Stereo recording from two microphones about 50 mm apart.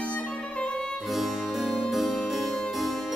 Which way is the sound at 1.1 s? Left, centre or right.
Centre.